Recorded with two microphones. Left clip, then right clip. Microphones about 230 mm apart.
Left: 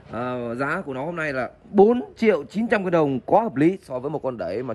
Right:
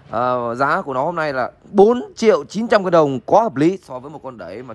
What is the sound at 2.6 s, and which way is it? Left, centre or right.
Speech, left.